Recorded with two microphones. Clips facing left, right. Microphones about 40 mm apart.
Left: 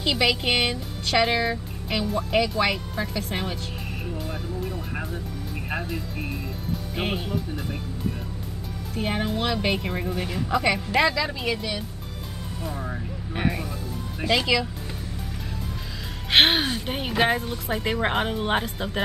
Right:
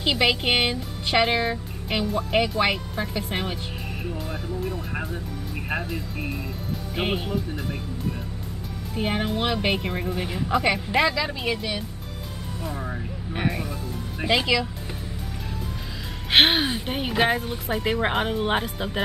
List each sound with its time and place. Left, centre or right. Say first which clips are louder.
0.0 s speech: right 1 dB; centre
8.9 s speech: right 1 dB; centre
9.8 s speech: even; centre
13.3 s speech: even; centre
14.2 s speech: right 1 dB; centre
16.3 s speech: even; centre